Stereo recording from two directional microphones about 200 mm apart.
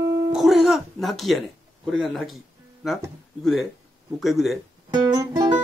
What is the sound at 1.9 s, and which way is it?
Speech, centre (ahead or behind).